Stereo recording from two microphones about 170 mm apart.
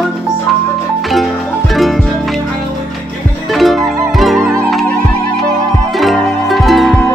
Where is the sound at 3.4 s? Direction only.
Centre (ahead or behind).